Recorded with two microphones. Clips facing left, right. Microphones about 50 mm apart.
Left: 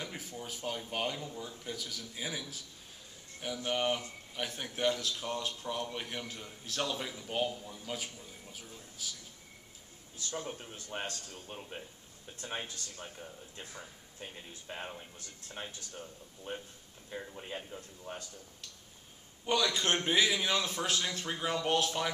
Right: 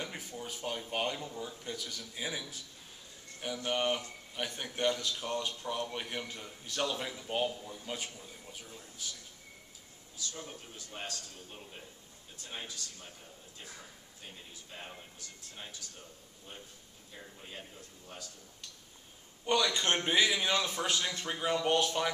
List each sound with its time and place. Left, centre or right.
0.0 s a man's voice: centre
10.1 s a man's voice: left
14.5 s a man's voice: left
16.5 s a man's voice: left
19.4 s a man's voice: centre